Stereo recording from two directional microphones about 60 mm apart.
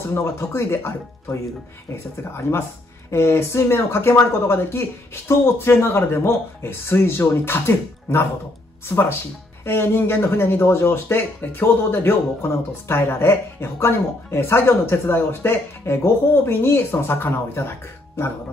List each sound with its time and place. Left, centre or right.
0.0 s speech: left
3.1 s speech: left